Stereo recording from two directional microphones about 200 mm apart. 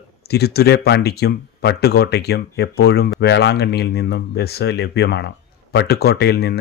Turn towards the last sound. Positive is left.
turn(degrees=55)  # may be behind; listen again after turning